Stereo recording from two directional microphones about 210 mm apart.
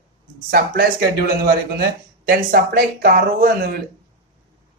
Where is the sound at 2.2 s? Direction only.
45° right (ahead or behind).